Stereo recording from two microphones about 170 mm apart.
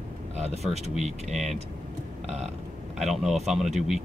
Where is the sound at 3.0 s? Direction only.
Centre (ahead or behind).